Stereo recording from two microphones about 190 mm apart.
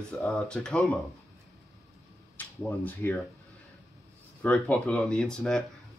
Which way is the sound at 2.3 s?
10° left (ahead or behind).